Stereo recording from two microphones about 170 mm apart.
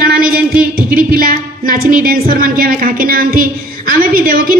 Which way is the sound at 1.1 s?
60° right (ahead or behind).